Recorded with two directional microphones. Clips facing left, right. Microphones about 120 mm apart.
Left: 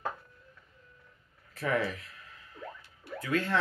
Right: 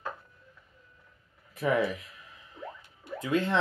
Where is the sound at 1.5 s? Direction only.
15° right (ahead or behind).